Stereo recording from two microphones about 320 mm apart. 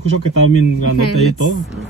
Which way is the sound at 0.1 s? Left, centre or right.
Left.